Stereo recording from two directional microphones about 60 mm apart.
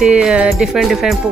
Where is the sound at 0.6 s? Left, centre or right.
Centre.